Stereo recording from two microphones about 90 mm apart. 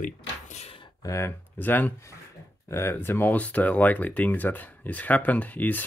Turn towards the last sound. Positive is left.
turn(degrees=20)  # may be behind; listen again after turning